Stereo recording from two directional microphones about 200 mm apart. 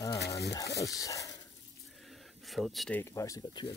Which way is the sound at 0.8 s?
15° left (ahead or behind).